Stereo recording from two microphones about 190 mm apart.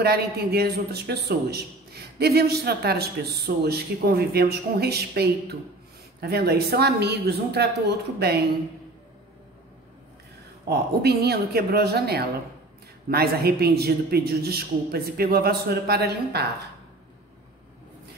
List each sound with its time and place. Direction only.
0.0 s a man's voice: 55° right (ahead or behind)
10.7 s a man's voice: 55° right (ahead or behind)